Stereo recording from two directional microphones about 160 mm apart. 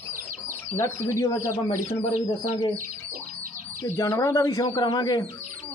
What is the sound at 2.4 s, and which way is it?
Speech, 40° left (ahead or behind).